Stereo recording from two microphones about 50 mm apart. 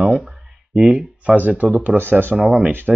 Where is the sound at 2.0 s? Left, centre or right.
Right.